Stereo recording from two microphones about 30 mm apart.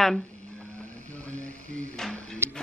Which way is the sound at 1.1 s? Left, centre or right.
Left.